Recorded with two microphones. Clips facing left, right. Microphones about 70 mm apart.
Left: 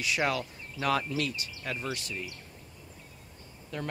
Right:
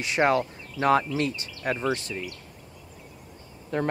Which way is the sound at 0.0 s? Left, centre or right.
Right.